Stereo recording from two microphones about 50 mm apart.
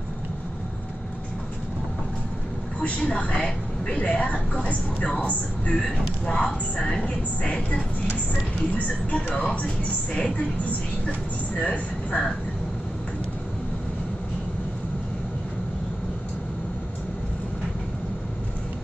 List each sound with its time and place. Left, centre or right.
2.8 s a woman's voice: left
5.8 s a woman's voice: left